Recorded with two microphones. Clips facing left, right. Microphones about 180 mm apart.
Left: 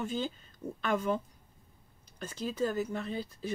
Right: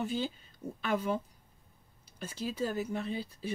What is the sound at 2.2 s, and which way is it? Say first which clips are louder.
Speech: left 2 dB; 5° right (ahead or behind).